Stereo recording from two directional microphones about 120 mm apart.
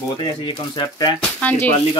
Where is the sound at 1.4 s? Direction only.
15° left (ahead or behind).